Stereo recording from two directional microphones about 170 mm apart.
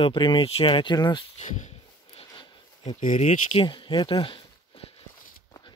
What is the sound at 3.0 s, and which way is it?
Speech, 50° left (ahead or behind).